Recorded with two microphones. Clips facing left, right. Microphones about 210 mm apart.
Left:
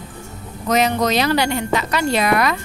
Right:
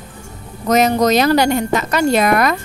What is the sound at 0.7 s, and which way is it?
A woman's voice, 45° right (ahead or behind).